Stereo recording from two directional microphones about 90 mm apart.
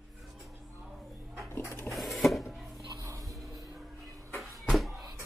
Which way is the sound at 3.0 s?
35° right (ahead or behind).